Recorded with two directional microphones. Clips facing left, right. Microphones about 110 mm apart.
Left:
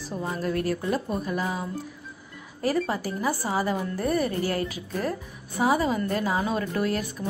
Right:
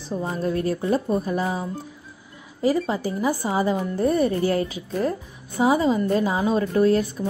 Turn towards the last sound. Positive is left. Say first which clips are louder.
# right 8 dB
turn(degrees=-30)  # may be behind; listen again after turning